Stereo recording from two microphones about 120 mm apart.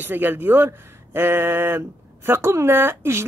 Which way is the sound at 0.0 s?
15° right (ahead or behind).